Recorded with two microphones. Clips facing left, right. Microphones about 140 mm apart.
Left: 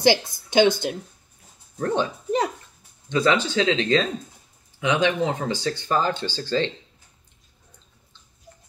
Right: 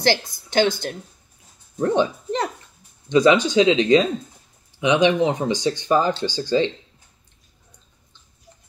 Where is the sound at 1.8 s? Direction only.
15° right (ahead or behind).